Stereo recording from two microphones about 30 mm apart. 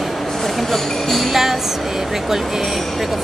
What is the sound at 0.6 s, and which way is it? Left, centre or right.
Speech, centre.